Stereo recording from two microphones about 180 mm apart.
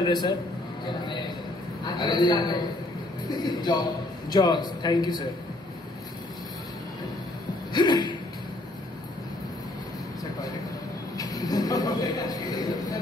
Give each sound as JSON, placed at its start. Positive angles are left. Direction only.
{"t": 0.0, "sound": "a man's voice", "side_deg": 25}
{"t": 7.7, "sound": "a man's voice", "side_deg": 25}
{"t": 11.1, "sound": "a sound", "side_deg": 20}